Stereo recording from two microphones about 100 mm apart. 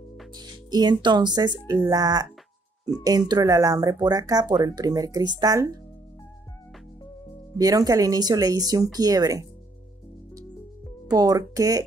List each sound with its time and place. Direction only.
0.3 s speech: 45° right (ahead or behind)
1.7 s speech: 25° right (ahead or behind)
2.0 s speech: 40° right (ahead or behind)
7.5 s speech: 40° right (ahead or behind)
11.1 s speech: 40° right (ahead or behind)